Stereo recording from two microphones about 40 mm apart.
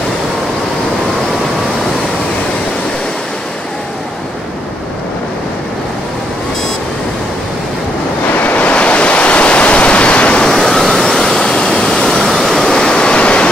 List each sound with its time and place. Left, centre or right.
8.5 s waves: left
10.4 s a sound: centre
12.1 s waterfall: centre
12.7 s vehicle: left